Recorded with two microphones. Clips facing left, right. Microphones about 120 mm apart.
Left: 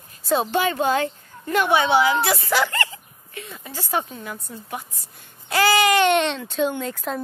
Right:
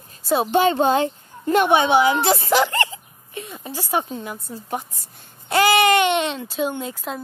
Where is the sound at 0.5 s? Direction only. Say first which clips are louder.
Right 7 dB; 25° right (ahead or behind).